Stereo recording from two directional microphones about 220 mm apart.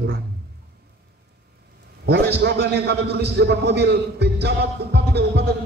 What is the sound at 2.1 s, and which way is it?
A man's voice, 50° right (ahead or behind).